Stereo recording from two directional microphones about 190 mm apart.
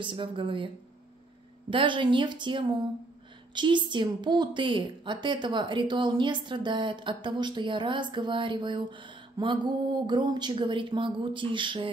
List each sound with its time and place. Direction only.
0.0 s a woman's voice: 25° right (ahead or behind)
1.7 s a woman's voice: 25° right (ahead or behind)